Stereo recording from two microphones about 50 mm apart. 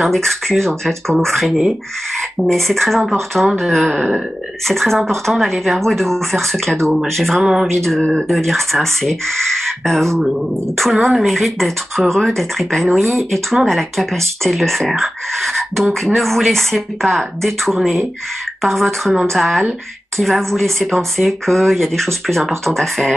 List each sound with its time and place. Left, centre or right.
0.0 s speech: centre
7.3 s a sound: centre
8.1 s speech: centre